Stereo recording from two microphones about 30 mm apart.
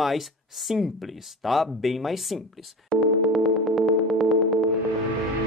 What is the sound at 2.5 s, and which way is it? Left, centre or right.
Music, centre.